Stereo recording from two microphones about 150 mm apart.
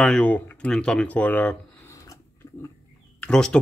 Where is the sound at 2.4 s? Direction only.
20° left (ahead or behind).